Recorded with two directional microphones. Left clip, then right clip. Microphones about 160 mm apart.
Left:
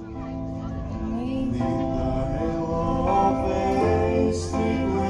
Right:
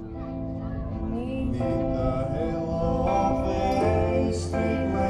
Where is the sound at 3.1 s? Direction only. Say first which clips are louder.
Left 5 dB; 35° right (ahead or behind).